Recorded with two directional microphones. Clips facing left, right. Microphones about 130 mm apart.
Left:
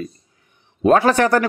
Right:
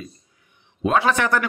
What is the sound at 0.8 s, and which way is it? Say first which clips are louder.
Speech: left 5 dB; 45° left (ahead or behind).